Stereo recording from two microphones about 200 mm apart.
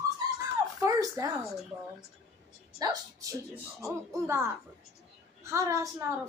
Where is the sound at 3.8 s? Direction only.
15° right (ahead or behind).